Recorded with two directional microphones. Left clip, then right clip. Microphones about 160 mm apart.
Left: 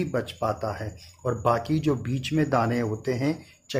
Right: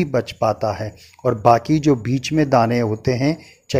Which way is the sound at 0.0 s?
40° right (ahead or behind).